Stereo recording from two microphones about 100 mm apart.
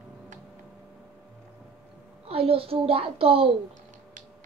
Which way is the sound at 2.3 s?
70° right (ahead or behind).